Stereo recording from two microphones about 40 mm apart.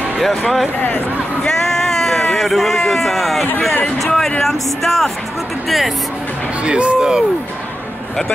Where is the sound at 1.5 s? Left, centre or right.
Centre.